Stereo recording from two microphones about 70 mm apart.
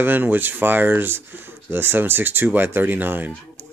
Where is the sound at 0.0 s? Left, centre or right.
Right.